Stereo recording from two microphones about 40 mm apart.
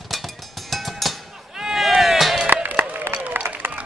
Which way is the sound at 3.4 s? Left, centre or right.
Right.